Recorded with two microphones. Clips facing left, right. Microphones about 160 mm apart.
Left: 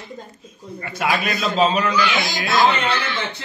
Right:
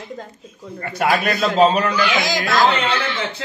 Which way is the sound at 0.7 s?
50° right (ahead or behind).